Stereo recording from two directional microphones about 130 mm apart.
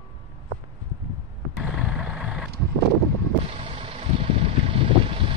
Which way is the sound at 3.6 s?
40° right (ahead or behind).